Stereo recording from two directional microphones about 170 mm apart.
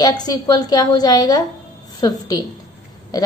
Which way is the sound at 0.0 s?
25° left (ahead or behind).